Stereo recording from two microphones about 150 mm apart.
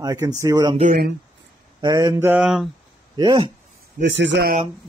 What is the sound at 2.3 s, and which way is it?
Speech, 5° right (ahead or behind).